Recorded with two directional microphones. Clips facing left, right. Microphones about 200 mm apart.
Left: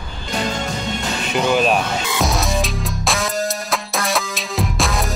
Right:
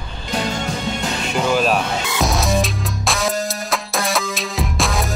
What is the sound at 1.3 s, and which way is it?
Music, centre (ahead or behind).